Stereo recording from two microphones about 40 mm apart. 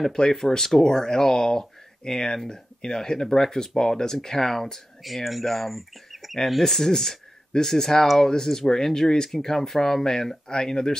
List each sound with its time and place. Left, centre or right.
0.1 s speech: centre